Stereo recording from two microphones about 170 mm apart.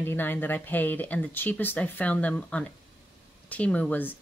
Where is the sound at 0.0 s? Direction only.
10° left (ahead or behind).